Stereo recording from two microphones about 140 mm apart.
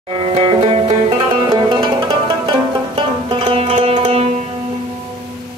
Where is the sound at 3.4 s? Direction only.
40° right (ahead or behind).